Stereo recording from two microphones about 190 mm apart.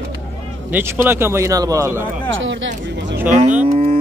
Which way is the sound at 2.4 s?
80° right.